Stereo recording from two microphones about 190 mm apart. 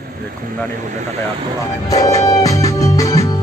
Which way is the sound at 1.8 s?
20° left (ahead or behind).